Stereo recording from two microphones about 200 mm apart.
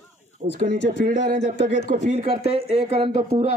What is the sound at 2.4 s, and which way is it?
Speech, 55° left (ahead or behind).